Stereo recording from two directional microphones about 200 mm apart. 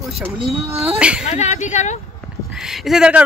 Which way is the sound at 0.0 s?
Centre (ahead or behind).